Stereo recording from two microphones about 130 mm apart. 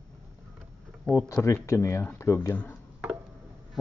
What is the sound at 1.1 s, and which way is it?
Speech, 20° left (ahead or behind).